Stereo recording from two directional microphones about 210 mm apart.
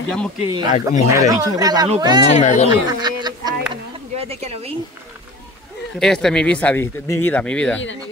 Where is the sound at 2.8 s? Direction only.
20° right (ahead or behind).